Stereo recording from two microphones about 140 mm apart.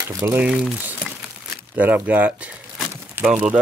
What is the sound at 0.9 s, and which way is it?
Crumpling, 5° right (ahead or behind).